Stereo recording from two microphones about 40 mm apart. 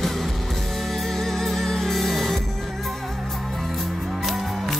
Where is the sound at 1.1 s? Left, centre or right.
Centre.